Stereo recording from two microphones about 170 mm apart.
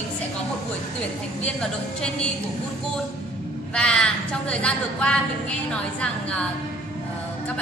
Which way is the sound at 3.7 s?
5° left (ahead or behind).